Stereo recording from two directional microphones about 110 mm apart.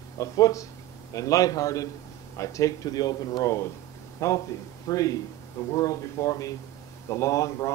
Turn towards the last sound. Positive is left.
turn(degrees=30)  # may be behind; listen again after turning